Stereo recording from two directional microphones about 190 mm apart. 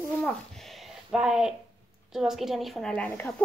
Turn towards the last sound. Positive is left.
turn(degrees=5)  # may be behind; listen again after turning